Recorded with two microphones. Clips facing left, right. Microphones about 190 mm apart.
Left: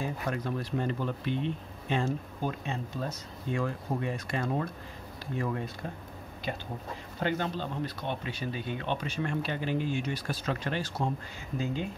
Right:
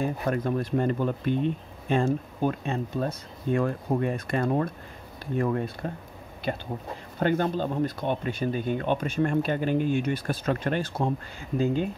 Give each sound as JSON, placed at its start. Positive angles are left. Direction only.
{"t": 0.0, "sound": "speech", "side_deg": -50}
{"t": 6.5, "sound": "speech", "side_deg": -50}